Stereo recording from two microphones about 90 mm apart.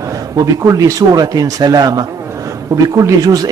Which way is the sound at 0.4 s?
40° right (ahead or behind).